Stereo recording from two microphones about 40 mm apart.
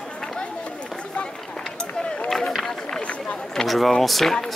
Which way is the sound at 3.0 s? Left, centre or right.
Left.